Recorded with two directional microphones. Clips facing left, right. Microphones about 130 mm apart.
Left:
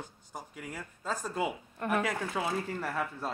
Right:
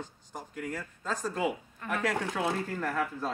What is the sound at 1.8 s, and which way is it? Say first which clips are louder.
Speech: left 5 dB; 60° left (ahead or behind).